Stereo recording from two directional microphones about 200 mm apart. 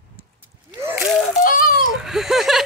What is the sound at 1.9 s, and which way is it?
Speech, centre (ahead or behind).